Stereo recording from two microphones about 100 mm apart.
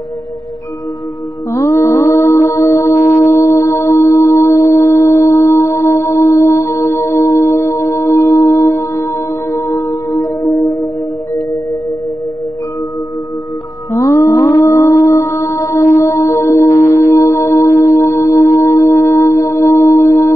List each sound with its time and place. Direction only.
1.5 s music: 30° left (ahead or behind)
13.9 s mantra: 30° left (ahead or behind)